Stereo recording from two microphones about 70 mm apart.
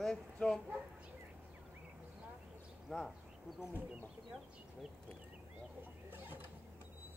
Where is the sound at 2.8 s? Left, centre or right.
Centre.